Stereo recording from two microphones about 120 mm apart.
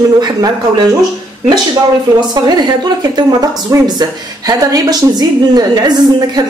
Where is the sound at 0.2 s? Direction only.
35° right (ahead or behind).